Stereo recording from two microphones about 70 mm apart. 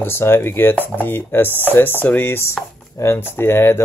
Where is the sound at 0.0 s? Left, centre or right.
Left.